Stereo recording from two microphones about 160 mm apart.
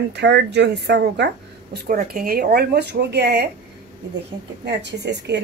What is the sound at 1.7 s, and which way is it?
Speech, 65° right (ahead or behind).